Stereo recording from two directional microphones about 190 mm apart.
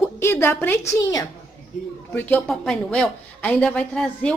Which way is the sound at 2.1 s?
5° left (ahead or behind).